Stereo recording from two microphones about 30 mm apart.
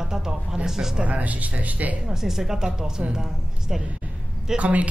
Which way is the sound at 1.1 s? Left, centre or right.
Right.